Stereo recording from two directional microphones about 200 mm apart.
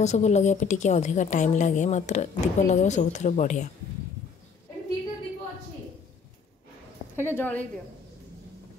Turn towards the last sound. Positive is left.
turn(degrees=10)  # may be behind; listen again after turning